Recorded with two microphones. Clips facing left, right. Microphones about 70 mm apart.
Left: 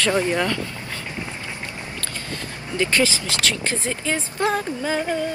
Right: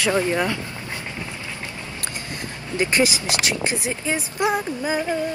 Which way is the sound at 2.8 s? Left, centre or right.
Right.